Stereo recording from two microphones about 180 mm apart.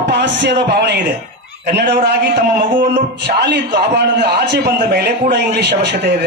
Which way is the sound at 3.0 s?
75° right (ahead or behind).